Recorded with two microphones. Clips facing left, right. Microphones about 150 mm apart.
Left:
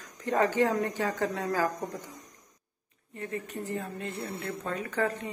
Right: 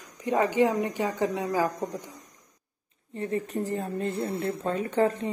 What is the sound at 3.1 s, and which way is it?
Speech, 30° right (ahead or behind).